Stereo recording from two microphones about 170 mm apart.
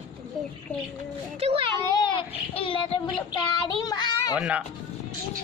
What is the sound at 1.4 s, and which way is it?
Speech, 30° right (ahead or behind).